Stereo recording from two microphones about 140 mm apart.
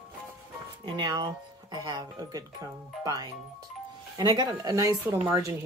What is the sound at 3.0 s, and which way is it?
Speech, 25° right (ahead or behind).